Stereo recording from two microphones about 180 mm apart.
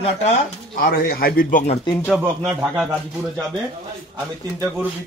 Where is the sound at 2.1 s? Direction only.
5° right (ahead or behind).